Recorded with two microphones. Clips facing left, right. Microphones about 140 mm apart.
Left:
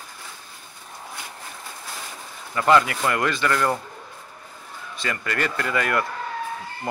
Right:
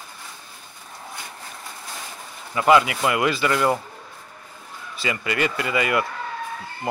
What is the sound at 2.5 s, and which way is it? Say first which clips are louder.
Speech: right 1 dB; 10° right (ahead or behind).